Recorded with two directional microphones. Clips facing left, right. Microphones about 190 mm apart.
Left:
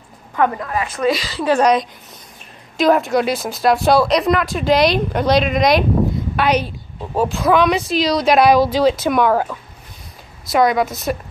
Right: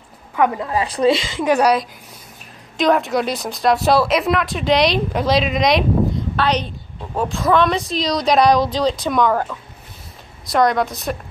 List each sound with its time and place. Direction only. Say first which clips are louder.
0.6 s a woman's voice: right 2 dB; 25° right (ahead or behind); by 11.1 s centre (ahead or behind)